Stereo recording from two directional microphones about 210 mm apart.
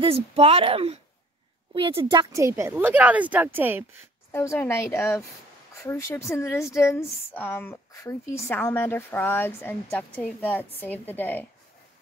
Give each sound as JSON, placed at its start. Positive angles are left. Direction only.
{"t": 0.0, "sound": "speech", "side_deg": -30}
{"t": 4.3, "sound": "a woman's voice", "side_deg": 10}